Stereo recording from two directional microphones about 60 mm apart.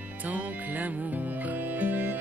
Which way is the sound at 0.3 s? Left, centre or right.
Right.